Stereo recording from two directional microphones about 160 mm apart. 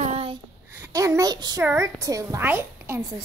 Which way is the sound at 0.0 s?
40° right (ahead or behind).